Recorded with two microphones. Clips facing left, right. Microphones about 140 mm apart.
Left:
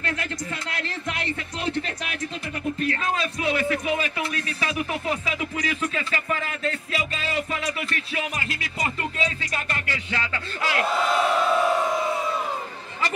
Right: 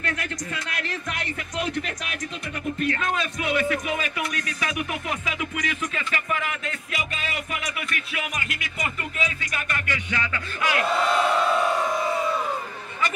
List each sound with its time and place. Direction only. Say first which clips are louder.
0.0 s speech: left 1 dB; 30° left (ahead or behind)
5.2 s music: left 1 dB; 35° left (ahead or behind)
10.9 s crowd: even; centre (ahead or behind)